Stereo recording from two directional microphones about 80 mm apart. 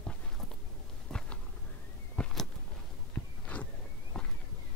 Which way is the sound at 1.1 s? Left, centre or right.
Centre.